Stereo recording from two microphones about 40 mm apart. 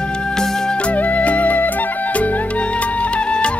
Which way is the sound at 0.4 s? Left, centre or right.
Centre.